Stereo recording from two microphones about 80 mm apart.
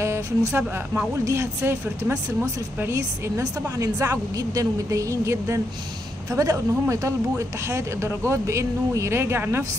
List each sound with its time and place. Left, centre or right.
0.0 s speech: right